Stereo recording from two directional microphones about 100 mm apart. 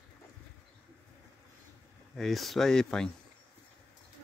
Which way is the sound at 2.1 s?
Centre (ahead or behind).